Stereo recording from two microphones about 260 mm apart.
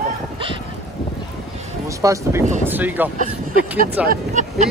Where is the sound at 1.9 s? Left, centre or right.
Centre.